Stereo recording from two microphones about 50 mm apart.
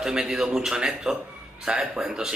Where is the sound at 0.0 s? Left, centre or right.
Centre.